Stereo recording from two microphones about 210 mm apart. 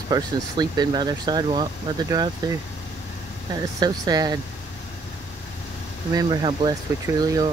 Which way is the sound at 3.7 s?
20° right (ahead or behind).